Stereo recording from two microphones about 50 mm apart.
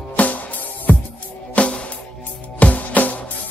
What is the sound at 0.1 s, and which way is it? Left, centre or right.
Music, left.